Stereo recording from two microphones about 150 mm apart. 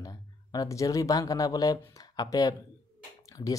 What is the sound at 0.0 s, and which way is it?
Speech, 25° left (ahead or behind).